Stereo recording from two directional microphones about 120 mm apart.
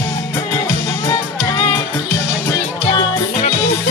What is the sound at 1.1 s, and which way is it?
Music, 35° left (ahead or behind).